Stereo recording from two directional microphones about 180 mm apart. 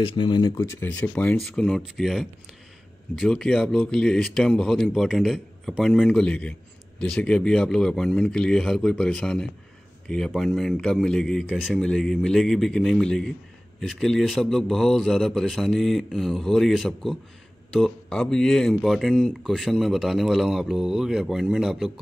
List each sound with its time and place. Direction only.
0.0 s speech: 25° left (ahead or behind)
0.8 s speech: 10° left (ahead or behind)